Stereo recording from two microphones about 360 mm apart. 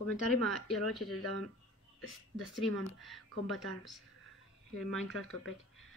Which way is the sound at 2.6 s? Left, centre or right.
Centre.